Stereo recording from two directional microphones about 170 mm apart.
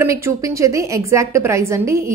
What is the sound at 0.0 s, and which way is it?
A woman's voice, 15° right (ahead or behind).